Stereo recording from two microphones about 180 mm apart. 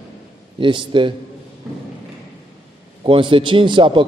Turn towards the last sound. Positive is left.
turn(degrees=-25)  # may be behind; listen again after turning